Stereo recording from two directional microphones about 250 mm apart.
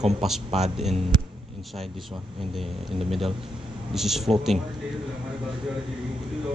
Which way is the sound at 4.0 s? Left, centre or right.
Centre.